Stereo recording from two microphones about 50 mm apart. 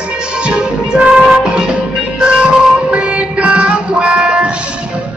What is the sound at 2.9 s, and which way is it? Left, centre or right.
Music, right.